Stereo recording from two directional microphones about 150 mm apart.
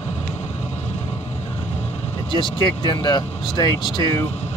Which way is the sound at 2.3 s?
30° left (ahead or behind).